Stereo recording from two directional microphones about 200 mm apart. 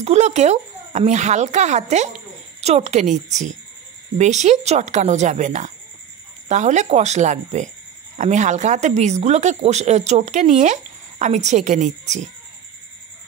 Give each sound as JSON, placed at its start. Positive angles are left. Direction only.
{"t": 0.0, "sound": "speech", "side_deg": -35}